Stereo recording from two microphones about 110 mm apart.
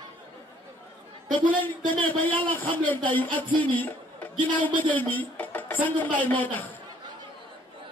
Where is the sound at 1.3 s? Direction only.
50° right (ahead or behind).